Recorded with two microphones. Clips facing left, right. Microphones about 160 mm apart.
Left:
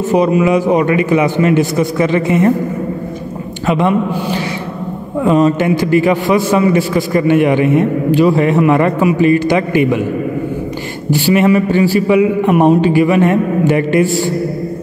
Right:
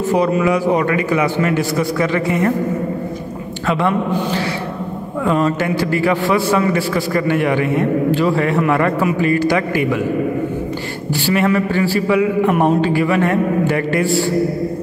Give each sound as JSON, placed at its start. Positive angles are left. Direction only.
{"t": 0.1, "sound": "a man's voice", "side_deg": 20}
{"t": 5.2, "sound": "a man's voice", "side_deg": 20}
{"t": 11.1, "sound": "a man's voice", "side_deg": 15}